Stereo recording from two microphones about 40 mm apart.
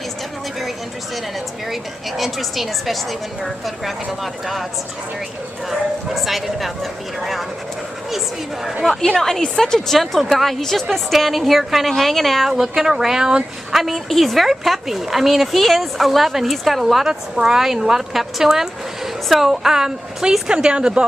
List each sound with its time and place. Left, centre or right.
1.7 s speech: centre
5.7 s speech: centre
9.1 s a woman's voice: centre
12.4 s speech: centre
13.7 s speech: centre
17.0 s speech: centre